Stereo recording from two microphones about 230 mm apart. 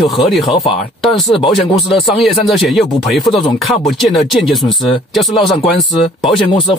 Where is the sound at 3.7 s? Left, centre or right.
Centre.